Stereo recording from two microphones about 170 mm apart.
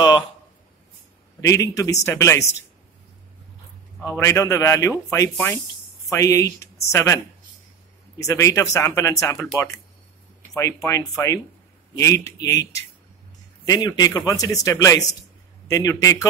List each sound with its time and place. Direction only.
1.4 s speech: 20° left (ahead or behind)
4.2 s speech: 15° left (ahead or behind)
8.2 s speech: 20° left (ahead or behind)
10.5 s speech: 20° left (ahead or behind)